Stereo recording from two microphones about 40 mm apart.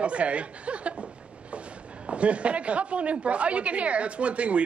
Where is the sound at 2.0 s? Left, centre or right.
Right.